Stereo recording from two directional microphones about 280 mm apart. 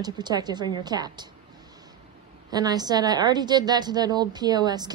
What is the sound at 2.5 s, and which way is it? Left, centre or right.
A woman's voice, centre.